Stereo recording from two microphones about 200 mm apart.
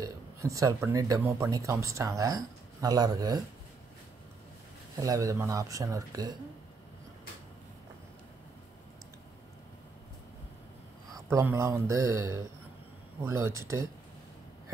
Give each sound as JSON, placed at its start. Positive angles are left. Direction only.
{"t": 0.0, "sound": "speech", "side_deg": -15}
{"t": 4.9, "sound": "speech", "side_deg": -15}
{"t": 11.1, "sound": "speech", "side_deg": -15}